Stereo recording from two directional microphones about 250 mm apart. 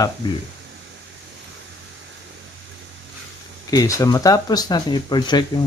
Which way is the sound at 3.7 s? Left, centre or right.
Centre.